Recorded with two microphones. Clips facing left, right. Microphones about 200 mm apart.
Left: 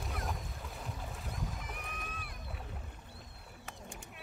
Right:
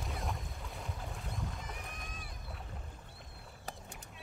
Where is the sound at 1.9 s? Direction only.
65° left (ahead or behind).